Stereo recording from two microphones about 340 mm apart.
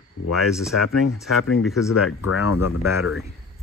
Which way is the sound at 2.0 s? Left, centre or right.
Left.